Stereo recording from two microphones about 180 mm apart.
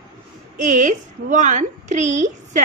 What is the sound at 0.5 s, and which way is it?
A woman's voice, 45° right (ahead or behind).